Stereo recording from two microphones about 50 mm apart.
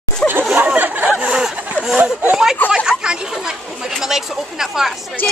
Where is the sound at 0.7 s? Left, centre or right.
Right.